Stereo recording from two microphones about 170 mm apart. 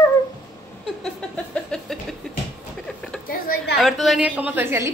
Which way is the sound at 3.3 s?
60° left (ahead or behind).